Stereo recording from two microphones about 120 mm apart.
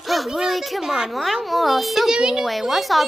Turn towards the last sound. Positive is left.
turn(degrees=0)  # may be behind; listen again after turning